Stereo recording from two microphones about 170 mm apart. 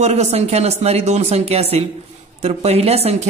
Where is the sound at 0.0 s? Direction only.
40° right (ahead or behind).